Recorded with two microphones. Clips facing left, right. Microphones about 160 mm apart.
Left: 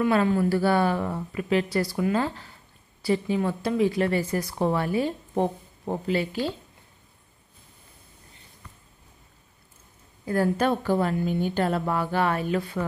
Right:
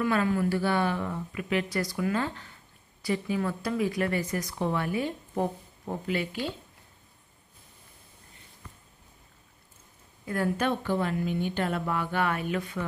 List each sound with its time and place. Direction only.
0.0 s speech: 30° left (ahead or behind)
10.2 s speech: 35° left (ahead or behind)